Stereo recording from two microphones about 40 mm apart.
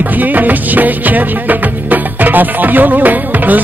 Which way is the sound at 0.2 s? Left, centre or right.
Right.